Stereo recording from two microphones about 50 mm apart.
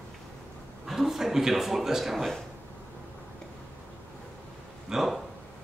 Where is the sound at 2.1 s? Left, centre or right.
Centre.